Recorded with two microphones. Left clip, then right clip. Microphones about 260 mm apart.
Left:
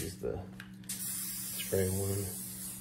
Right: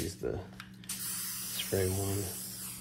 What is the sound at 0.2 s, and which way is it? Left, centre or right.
Speech, right.